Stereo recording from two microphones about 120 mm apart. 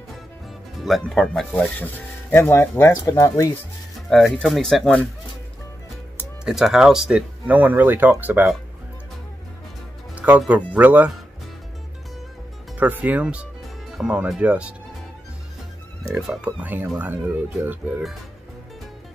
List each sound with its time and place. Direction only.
0.7 s speech: centre (ahead or behind)
1.6 s speech: 15° left (ahead or behind)
4.1 s speech: centre (ahead or behind)
6.4 s speech: 5° right (ahead or behind)
10.1 s music: 10° right (ahead or behind)
10.7 s speech: 15° right (ahead or behind)
12.7 s speech: 15° right (ahead or behind)
16.2 s speech: 5° right (ahead or behind)